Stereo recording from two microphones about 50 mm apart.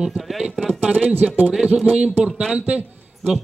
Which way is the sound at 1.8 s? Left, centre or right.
Centre.